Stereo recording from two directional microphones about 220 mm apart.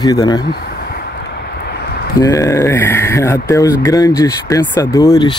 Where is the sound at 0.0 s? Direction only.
20° left (ahead or behind).